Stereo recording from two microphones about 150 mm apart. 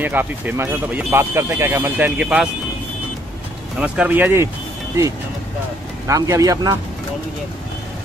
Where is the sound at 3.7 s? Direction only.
10° right (ahead or behind).